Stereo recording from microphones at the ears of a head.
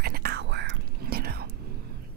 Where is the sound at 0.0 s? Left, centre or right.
Right.